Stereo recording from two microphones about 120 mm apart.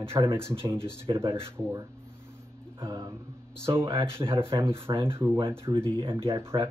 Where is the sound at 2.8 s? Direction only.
35° right (ahead or behind).